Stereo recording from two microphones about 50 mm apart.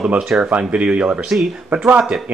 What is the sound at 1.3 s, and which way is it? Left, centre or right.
Speech, centre.